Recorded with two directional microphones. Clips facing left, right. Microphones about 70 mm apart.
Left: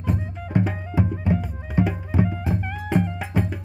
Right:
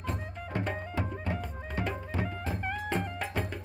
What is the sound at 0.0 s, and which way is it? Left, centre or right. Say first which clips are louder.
Music: left 8 dB; centre.